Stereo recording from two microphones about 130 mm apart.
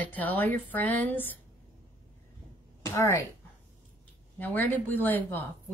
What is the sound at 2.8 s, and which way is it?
Speech, 20° left (ahead or behind).